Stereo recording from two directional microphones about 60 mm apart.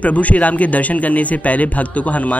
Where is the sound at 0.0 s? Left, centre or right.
Left.